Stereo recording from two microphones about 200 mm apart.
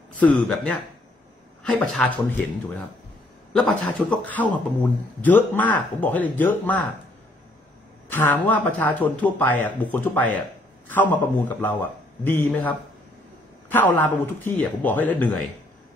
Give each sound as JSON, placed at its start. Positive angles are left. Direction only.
{"t": 0.2, "sound": "a man's voice", "side_deg": 5}
{"t": 3.5, "sound": "a man's voice", "side_deg": 5}
{"t": 8.1, "sound": "speech", "side_deg": 10}